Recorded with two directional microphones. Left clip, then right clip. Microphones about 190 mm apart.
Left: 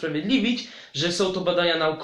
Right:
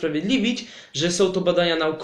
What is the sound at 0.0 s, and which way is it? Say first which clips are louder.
Speech: right 2 dB; 45° right (ahead or behind).